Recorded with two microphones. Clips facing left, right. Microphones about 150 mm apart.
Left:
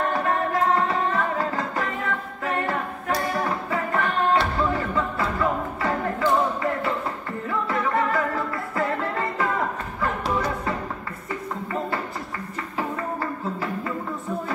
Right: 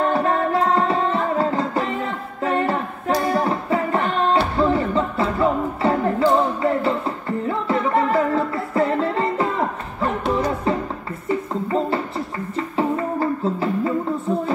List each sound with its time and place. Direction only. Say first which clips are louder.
0.1 s music: right 4 dB; 30° right (ahead or behind)
11.2 s a sound: right 8 dB; 25° right (ahead or behind)
12.5 s music: right 8 dB; 25° right (ahead or behind)